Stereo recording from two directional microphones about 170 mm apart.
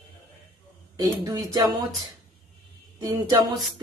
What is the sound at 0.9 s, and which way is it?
Speech, 20° right (ahead or behind).